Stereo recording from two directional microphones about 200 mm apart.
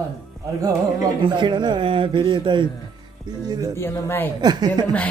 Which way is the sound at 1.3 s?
20° right (ahead or behind).